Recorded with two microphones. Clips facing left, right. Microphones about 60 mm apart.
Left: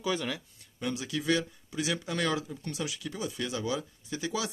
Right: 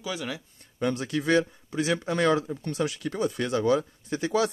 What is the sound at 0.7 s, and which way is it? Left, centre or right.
Speech, right.